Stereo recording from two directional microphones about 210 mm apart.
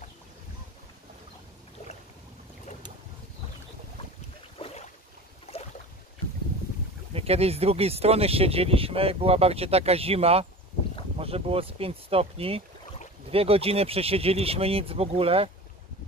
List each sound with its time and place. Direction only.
4.6 s boat: 30° left (ahead or behind)
7.2 s speech: 30° right (ahead or behind)